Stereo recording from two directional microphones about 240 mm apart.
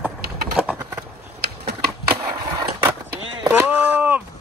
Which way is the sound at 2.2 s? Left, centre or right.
Centre.